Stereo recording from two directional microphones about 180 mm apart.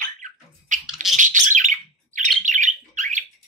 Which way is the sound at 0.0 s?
45° right (ahead or behind).